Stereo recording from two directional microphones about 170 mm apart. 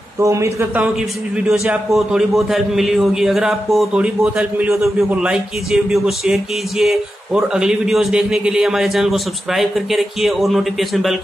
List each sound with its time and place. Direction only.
0.2 s speech: 15° right (ahead or behind)
1.3 s a man's voice: 5° right (ahead or behind)